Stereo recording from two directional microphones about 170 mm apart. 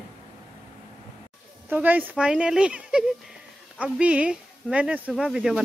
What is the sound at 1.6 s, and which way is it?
Speech, 10° right (ahead or behind).